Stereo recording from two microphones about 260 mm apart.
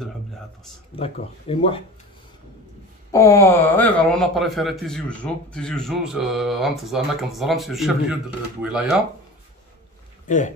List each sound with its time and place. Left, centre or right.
0.9 s speech: left
3.1 s a man's voice: centre
10.2 s speech: left